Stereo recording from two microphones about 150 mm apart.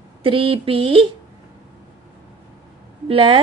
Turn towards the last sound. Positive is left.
turn(degrees=-35)  # may be behind; listen again after turning